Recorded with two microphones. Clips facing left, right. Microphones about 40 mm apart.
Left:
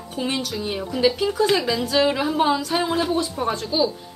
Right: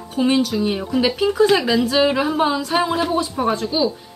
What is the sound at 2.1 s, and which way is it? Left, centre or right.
A woman's voice, centre.